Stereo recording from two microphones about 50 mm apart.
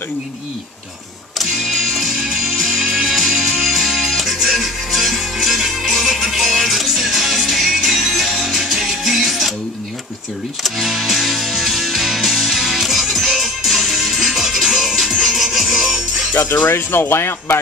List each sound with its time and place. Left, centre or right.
1.4 s music: centre
10.6 s music: centre
16.3 s speech: left